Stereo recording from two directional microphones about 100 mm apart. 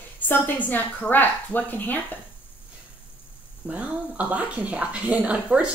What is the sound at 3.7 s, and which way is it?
Speech, 15° right (ahead or behind).